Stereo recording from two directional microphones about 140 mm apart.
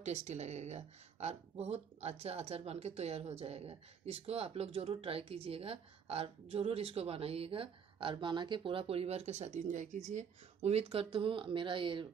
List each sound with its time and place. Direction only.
0.0 s speech: 55° right (ahead or behind); by 12.1 s 35° right (ahead or behind)